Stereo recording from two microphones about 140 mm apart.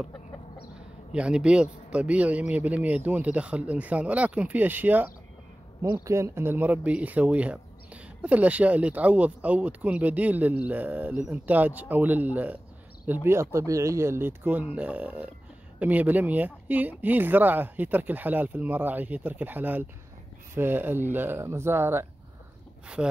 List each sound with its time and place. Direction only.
0.7 s speech: 5° right (ahead or behind)